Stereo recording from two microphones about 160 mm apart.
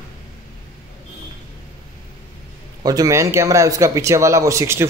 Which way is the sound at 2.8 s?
20° right (ahead or behind).